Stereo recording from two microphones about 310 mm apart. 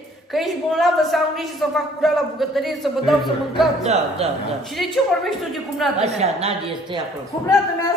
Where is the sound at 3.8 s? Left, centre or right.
Right.